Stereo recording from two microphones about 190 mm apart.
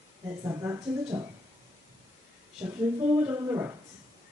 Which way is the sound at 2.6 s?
10° right (ahead or behind).